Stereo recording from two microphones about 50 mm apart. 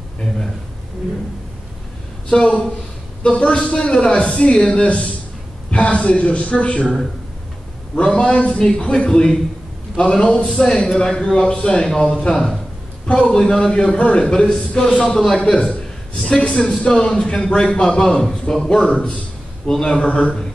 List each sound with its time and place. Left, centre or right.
2.2 s a woman's voice: centre
8.0 s a man's voice: centre